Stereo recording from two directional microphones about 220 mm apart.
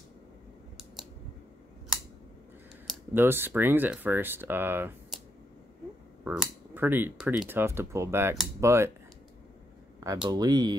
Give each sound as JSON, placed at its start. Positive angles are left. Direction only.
{"t": 2.9, "sound": "speech", "side_deg": -10}
{"t": 6.2, "sound": "speech", "side_deg": -5}
{"t": 9.9, "sound": "speech", "side_deg": -15}